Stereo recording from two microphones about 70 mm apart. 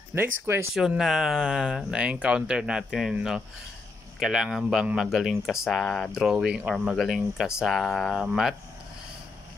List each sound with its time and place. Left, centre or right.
0.1 s speech: right
0.7 s speech: centre
5.8 s speech: centre
6.3 s speech: centre